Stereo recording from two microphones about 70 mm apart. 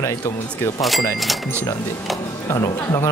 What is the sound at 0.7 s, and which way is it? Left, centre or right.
Speech, centre.